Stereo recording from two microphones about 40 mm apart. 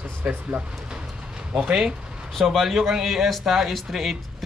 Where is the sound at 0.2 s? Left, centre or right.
Right.